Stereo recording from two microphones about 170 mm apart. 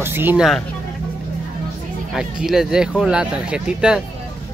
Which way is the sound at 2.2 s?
5° right (ahead or behind).